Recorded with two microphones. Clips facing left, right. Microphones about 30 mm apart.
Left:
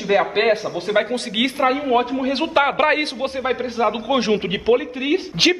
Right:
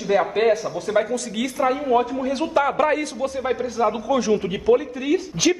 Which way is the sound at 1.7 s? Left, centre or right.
Left.